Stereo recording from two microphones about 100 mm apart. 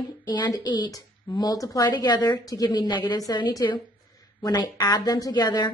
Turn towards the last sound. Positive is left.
turn(degrees=45)  # may be behind; listen again after turning